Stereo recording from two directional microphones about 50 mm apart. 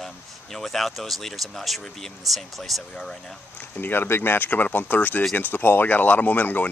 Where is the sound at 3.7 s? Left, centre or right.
Left.